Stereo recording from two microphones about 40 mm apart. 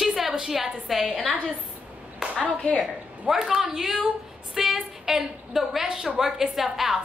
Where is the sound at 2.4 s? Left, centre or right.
Left.